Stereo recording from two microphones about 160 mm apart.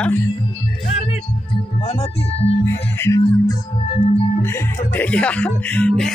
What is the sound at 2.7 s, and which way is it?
Speech, 15° left (ahead or behind).